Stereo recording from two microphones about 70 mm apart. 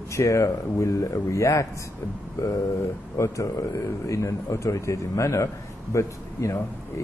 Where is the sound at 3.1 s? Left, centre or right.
Left.